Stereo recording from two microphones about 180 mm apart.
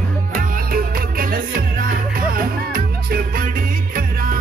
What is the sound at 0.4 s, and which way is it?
Music, 50° right (ahead or behind).